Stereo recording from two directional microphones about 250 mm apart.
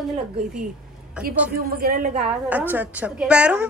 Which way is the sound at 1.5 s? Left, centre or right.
Right.